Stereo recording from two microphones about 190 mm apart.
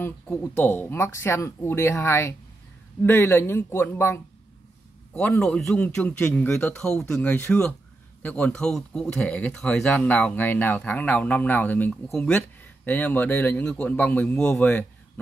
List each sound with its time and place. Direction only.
0.0 s a man's voice: 10° left (ahead or behind)